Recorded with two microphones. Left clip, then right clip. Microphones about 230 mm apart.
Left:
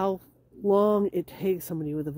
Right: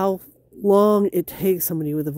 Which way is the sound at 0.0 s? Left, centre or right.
Right.